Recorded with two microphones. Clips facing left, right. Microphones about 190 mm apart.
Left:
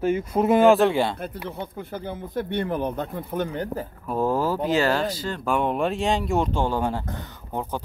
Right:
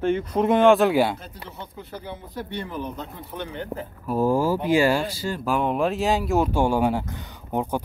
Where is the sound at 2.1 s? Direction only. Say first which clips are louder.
Left 6 dB; 55° left (ahead or behind).